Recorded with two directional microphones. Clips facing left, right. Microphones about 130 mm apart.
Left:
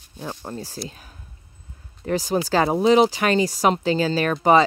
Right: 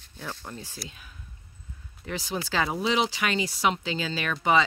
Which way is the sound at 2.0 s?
45° left (ahead or behind).